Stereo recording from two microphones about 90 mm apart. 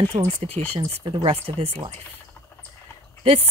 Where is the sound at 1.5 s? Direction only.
90° right.